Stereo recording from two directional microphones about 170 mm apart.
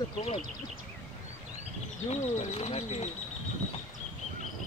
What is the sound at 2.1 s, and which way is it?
Speech, 40° left (ahead or behind).